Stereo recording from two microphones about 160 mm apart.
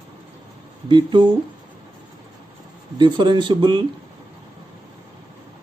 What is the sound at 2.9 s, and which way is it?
Speech, 30° right (ahead or behind).